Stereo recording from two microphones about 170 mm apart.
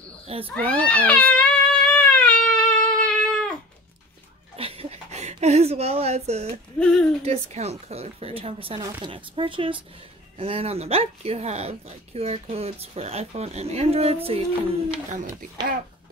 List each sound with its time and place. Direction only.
0.6 s cat: 5° left (ahead or behind)
4.6 s a sound: 35° right (ahead or behind)
6.8 s speech: 10° left (ahead or behind)
7.2 s speech: 40° right (ahead or behind)